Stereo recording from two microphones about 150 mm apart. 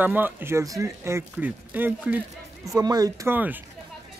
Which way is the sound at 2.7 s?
25° right (ahead or behind).